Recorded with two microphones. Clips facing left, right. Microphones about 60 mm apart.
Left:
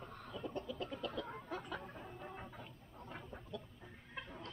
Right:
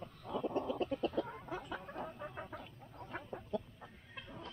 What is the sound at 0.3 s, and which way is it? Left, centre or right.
Chicken, right.